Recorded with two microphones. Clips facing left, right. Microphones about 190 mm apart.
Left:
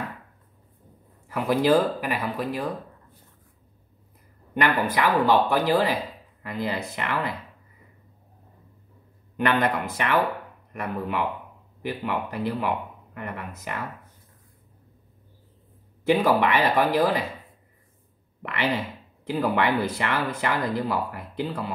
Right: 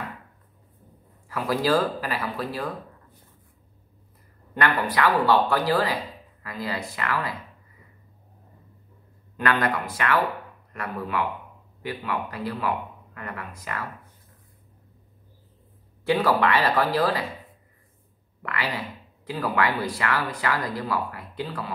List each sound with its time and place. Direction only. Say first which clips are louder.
1.3 s speech: left 3 dB; 20° left (ahead or behind)
4.6 s speech: left 1 dB; 20° left (ahead or behind)
9.4 s speech: left 1 dB; 20° left (ahead or behind)
16.1 s speech: left 1 dB; 20° left (ahead or behind)
18.4 s speech: left 4 dB; 25° left (ahead or behind)